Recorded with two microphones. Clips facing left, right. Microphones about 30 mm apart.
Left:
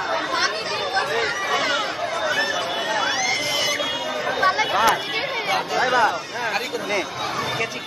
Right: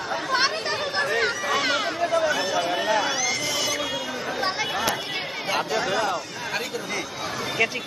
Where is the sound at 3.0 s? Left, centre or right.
Left.